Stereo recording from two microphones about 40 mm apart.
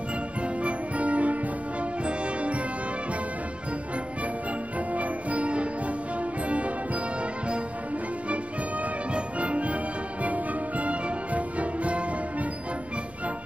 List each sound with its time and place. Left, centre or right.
0.4 s music: right
4.9 s music: right
9.1 s music: right